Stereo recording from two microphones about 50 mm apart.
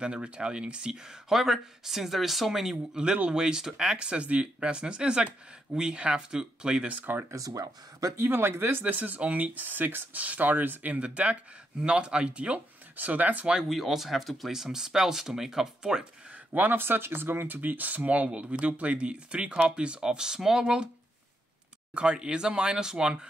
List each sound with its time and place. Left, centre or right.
0.0 s speech: centre
6.9 s speech: right
8.2 s speech: right
8.8 s speech: right
13.7 s speech: centre
16.5 s speech: right; by 20.9 s centre
21.9 s speech: centre